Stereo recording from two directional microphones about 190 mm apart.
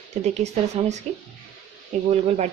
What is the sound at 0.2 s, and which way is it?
Speech, 35° right (ahead or behind).